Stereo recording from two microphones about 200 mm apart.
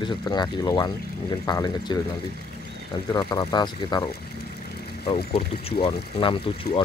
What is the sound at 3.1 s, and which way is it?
Speech, 20° left (ahead or behind).